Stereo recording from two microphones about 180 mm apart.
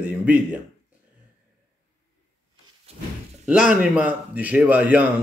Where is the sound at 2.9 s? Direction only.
35° right (ahead or behind).